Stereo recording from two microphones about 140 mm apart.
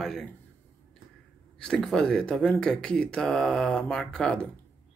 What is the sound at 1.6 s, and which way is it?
Speech, 5° left (ahead or behind).